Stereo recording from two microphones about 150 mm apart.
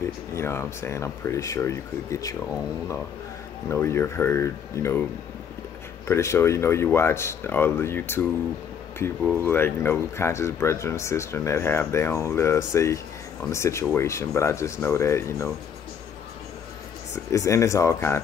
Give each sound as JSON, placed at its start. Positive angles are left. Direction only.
{"t": 0.0, "sound": "speech", "side_deg": 15}
{"t": 3.7, "sound": "speech", "side_deg": 15}
{"t": 6.0, "sound": "speech", "side_deg": 20}
{"t": 17.1, "sound": "speech", "side_deg": 20}